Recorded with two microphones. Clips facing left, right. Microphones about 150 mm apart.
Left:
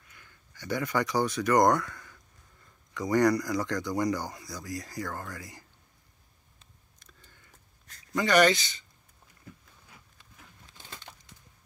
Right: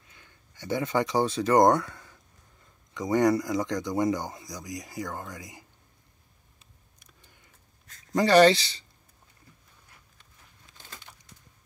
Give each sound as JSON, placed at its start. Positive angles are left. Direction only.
{"t": 0.1, "sound": "speech", "side_deg": -25}
{"t": 6.6, "sound": "a sound", "side_deg": -15}
{"t": 8.1, "sound": "speech", "side_deg": -35}